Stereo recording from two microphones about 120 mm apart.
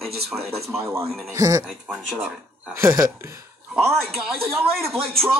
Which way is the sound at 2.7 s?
25° right (ahead or behind).